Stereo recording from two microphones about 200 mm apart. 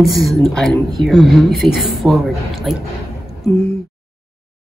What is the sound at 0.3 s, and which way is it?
Speech, centre (ahead or behind).